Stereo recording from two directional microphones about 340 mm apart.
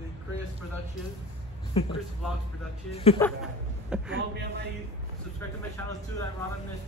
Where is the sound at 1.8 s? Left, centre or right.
Centre.